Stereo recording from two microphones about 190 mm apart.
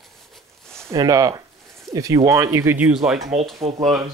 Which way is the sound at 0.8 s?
20° right (ahead or behind).